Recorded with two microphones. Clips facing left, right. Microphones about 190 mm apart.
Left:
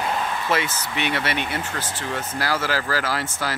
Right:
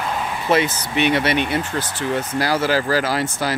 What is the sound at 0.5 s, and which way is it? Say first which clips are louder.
Speech: right 10 dB; 20° right (ahead or behind).